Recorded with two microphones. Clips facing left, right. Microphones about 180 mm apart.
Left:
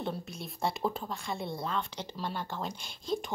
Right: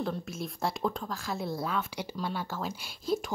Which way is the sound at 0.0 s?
Centre (ahead or behind).